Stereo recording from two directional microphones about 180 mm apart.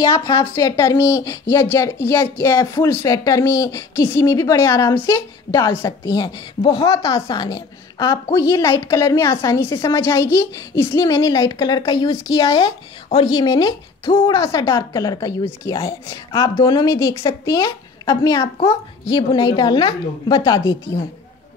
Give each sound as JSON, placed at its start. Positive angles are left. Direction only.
{"t": 0.2, "sound": "a woman's voice", "side_deg": 15}